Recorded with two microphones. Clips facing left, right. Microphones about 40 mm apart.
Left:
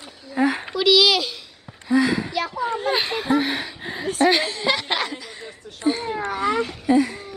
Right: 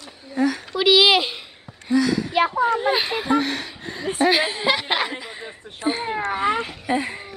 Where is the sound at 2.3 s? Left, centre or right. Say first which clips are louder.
Right 6 dB; right.